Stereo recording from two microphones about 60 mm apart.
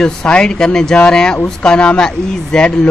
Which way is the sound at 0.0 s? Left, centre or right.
Centre.